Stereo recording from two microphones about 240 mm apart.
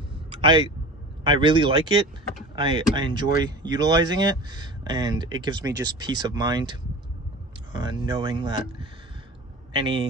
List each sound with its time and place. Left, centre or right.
0.3 s a sound: right
1.2 s speech: centre
7.8 s speech: centre